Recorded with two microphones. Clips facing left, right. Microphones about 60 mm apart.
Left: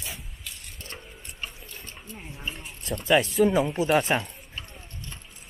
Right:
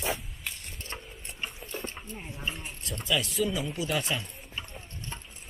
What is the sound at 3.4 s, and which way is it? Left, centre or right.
Speech, left.